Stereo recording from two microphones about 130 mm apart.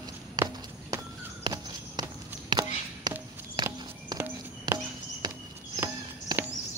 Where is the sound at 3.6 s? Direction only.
35° right (ahead or behind).